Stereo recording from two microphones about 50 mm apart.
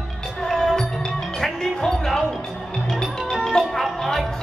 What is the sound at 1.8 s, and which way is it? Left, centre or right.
Basketball bounce, centre.